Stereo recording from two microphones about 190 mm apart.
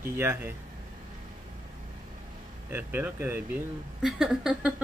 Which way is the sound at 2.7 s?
10° right (ahead or behind).